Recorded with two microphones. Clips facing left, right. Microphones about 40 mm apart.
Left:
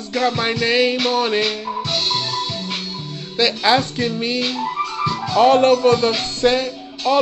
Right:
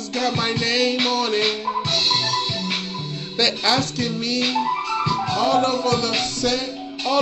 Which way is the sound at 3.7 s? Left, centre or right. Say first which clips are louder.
Left 4 dB; left.